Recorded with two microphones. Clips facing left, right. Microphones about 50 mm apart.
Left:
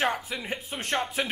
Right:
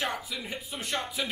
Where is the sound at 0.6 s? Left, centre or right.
Left.